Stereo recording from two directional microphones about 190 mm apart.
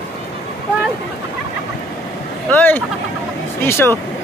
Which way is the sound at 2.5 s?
10° left (ahead or behind).